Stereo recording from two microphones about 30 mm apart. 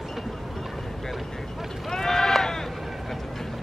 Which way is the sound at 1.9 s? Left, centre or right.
Centre.